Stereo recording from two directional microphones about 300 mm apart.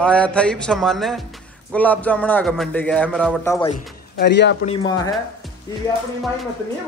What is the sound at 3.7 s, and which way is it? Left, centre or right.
Speech, left.